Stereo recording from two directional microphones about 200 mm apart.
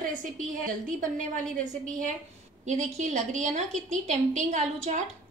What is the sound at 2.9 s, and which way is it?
A woman's voice, 35° right (ahead or behind).